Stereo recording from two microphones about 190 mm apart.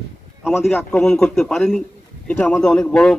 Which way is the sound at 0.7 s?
5° left (ahead or behind).